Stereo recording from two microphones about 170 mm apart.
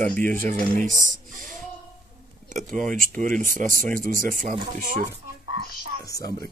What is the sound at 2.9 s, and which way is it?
Speech, 50° right (ahead or behind).